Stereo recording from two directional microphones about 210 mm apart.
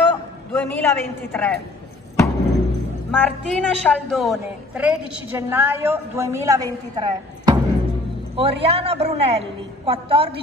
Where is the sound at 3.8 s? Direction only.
Centre (ahead or behind).